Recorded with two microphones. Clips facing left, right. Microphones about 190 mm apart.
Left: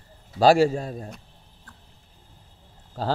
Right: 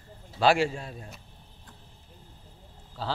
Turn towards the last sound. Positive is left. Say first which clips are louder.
# left 6 dB
turn(degrees=45)  # may be behind; listen again after turning